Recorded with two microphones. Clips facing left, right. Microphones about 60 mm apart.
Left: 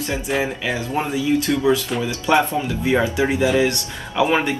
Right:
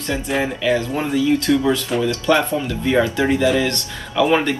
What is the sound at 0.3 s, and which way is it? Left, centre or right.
Speech, centre.